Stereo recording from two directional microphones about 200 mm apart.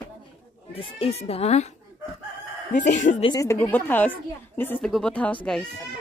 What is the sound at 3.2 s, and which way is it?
Speech, 15° left (ahead or behind).